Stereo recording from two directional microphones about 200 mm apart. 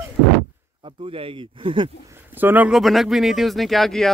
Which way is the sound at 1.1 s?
30° right (ahead or behind).